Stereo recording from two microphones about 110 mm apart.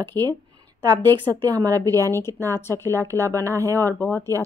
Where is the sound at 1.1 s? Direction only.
40° right (ahead or behind).